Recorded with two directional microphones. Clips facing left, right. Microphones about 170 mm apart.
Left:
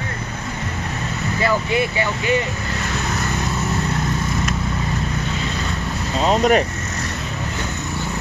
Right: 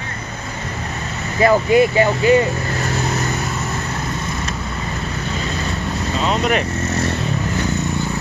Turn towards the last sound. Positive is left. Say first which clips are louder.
# left 3 dB
turn(degrees=40)  # may be behind; listen again after turning